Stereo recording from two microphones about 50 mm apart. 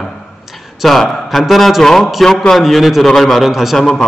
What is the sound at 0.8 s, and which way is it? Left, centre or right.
A man's voice, centre.